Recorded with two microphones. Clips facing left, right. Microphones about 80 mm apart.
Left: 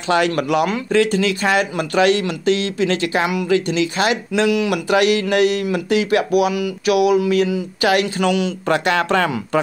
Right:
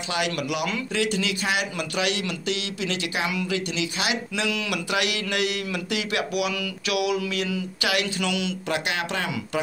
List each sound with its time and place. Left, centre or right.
0.1 s speech: left
6.5 s a sound: left
7.8 s speech: left
8.6 s speech: left